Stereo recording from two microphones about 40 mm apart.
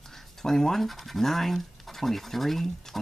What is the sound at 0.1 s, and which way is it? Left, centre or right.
Speech, centre.